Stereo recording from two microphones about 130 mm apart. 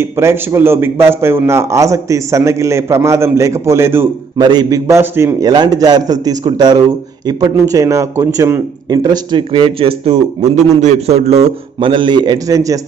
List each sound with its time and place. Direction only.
0.0 s a man's voice: 20° right (ahead or behind)
4.4 s a man's voice: 30° right (ahead or behind)
5.5 s a man's voice: 30° right (ahead or behind); by 11.4 s 55° right (ahead or behind)
11.8 s a man's voice: 40° right (ahead or behind)